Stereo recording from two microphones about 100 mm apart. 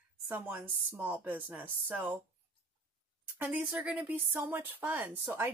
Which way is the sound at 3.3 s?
20° right (ahead or behind).